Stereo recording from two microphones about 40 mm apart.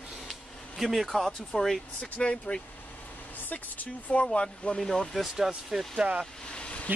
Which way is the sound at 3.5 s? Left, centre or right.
Left.